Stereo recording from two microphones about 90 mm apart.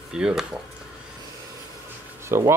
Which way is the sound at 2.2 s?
30° right (ahead or behind).